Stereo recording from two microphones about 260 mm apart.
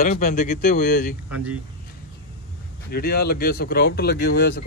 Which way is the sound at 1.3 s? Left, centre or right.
Centre.